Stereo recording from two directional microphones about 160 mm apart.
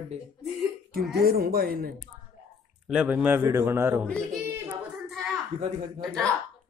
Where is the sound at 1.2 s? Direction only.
70° right (ahead or behind).